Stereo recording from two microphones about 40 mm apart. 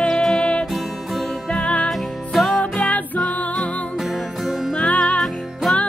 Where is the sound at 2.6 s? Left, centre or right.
Left.